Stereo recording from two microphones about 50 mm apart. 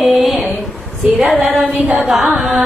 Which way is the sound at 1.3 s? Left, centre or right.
Right.